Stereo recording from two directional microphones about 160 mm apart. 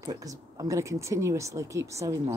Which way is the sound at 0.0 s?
20° right (ahead or behind).